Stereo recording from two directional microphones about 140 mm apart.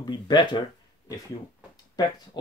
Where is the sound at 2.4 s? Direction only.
30° left (ahead or behind).